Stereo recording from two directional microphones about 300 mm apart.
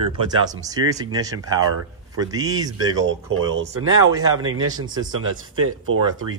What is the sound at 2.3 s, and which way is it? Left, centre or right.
Speech, centre.